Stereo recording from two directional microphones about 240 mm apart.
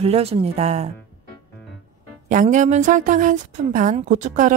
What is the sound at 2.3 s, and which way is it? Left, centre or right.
A woman's voice, right.